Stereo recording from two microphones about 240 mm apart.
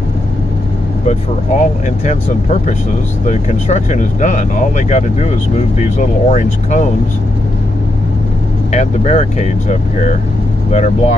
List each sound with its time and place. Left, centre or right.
1.0 s speech: left
8.7 s speech: left